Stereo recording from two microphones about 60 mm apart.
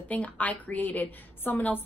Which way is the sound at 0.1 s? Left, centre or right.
Left.